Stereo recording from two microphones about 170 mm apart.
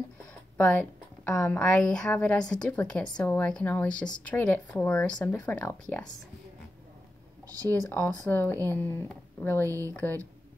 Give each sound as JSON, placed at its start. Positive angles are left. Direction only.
{"t": 0.6, "sound": "a sound", "side_deg": 5}
{"t": 1.3, "sound": "a woman's voice", "side_deg": 20}
{"t": 1.6, "sound": "a woman's voice", "side_deg": 5}
{"t": 7.4, "sound": "speech", "side_deg": -20}
{"t": 7.9, "sound": "speech", "side_deg": 10}
{"t": 9.7, "sound": "speech", "side_deg": -15}